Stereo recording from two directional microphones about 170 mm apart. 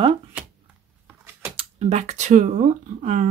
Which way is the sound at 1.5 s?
35° right (ahead or behind).